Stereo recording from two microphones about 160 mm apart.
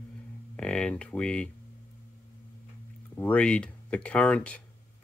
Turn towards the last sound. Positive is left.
turn(degrees=5)  # may be behind; listen again after turning